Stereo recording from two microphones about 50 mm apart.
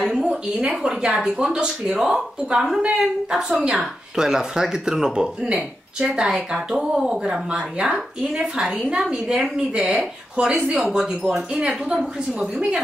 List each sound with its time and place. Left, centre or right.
0.1 s a sound: centre
0.7 s speech: centre
10.4 s a woman's voice: right